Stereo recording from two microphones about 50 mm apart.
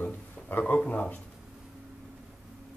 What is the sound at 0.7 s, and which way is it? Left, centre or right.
Speech, left.